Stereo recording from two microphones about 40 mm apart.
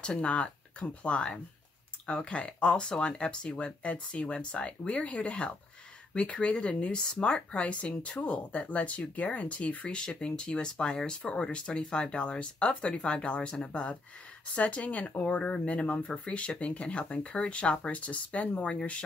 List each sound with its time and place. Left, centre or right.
0.0 s speech: left
9.8 s speech: left